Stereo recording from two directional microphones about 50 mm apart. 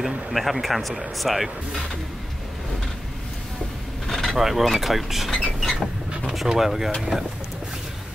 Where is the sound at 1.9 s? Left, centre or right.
Centre.